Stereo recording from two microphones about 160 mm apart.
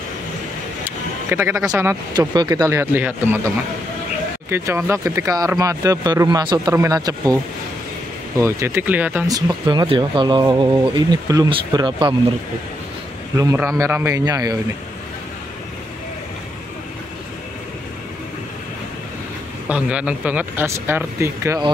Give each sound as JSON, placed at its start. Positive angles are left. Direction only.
{"t": 0.8, "sound": "a sound", "side_deg": -15}
{"t": 1.7, "sound": "speech", "side_deg": -15}
{"t": 2.6, "sound": "speech", "side_deg": -15}
{"t": 4.5, "sound": "speech", "side_deg": -15}
{"t": 8.4, "sound": "speech", "side_deg": -15}
{"t": 9.3, "sound": "speech", "side_deg": -25}
{"t": 13.4, "sound": "speech", "side_deg": -20}
{"t": 19.7, "sound": "speech", "side_deg": -5}